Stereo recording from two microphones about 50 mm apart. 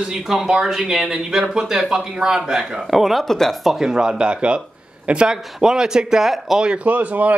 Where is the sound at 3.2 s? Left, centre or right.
Centre.